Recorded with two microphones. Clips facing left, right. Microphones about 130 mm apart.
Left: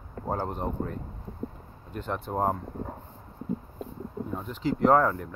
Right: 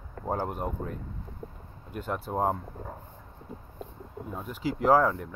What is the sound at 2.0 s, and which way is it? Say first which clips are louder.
Speech: even; 5° right (ahead or behind).